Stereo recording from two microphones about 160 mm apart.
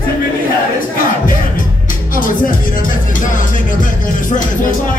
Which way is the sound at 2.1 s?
60° left (ahead or behind).